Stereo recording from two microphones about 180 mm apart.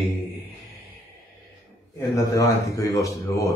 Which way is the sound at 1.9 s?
15° left (ahead or behind).